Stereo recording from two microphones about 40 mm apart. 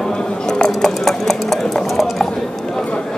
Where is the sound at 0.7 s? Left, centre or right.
Centre.